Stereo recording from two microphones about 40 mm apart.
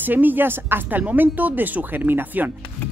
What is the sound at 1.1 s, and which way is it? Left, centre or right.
Speech, right.